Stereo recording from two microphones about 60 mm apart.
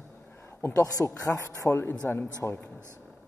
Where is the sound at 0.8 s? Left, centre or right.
Left.